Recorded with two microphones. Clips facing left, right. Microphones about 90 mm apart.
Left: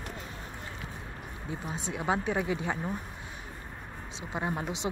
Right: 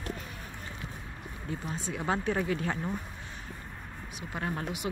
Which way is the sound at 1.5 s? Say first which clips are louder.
Even; 15° left (ahead or behind).